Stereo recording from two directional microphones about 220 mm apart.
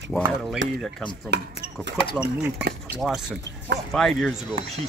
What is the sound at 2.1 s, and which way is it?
Speech, 5° right (ahead or behind).